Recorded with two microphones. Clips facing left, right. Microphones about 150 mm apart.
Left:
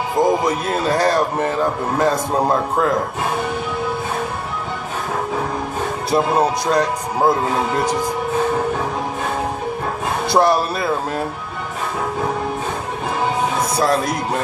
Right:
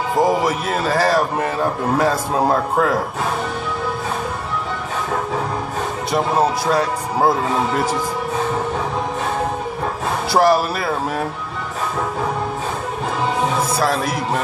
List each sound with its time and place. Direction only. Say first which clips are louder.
0.2 s speech: left 1 dB; 5° right (ahead or behind)
6.7 s speech: left 1 dB; 5° right (ahead or behind)
10.3 s speech: right 1 dB; 5° right (ahead or behind)
13.7 s speech: left 1 dB; 5° right (ahead or behind)